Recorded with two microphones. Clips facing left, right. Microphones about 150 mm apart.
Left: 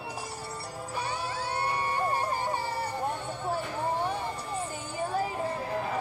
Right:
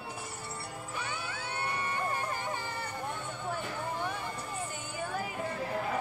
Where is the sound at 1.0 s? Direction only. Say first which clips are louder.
Left 7 dB; 35° left (ahead or behind).